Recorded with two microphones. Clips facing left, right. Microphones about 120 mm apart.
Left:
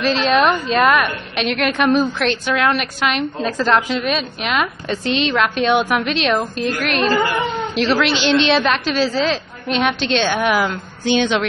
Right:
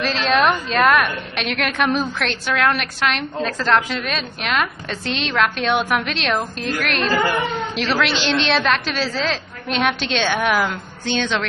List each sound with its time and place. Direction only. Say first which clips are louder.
0.0 s a woman's voice: left 3 dB; centre (ahead or behind)
11.1 s child singing: left 4 dB; 15° left (ahead or behind)